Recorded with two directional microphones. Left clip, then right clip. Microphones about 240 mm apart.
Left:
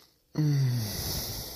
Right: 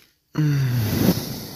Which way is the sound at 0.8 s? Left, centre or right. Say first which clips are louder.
Right 12 dB; right.